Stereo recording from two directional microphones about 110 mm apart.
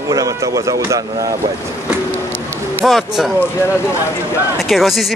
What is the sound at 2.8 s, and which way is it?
Speech, centre (ahead or behind).